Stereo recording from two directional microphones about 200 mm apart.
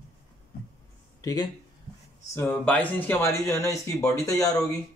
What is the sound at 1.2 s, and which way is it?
Speech, 15° left (ahead or behind).